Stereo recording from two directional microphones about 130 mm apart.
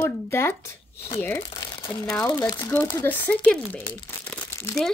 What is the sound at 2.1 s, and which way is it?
Speech, 5° left (ahead or behind).